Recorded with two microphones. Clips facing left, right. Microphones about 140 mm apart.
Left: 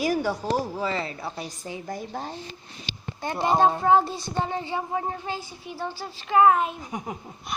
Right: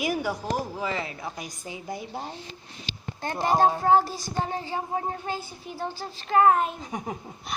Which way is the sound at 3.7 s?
5° right (ahead or behind).